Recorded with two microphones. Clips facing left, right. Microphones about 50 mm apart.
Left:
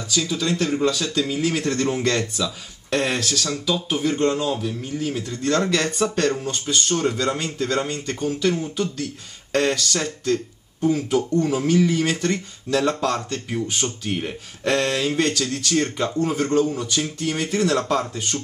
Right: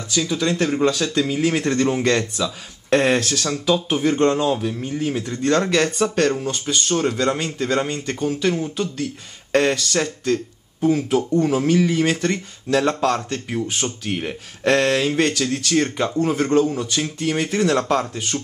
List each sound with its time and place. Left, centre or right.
0.1 s speech: centre
4.5 s a man's voice: right